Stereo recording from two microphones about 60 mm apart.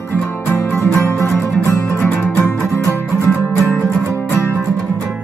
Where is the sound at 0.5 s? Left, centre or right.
Left.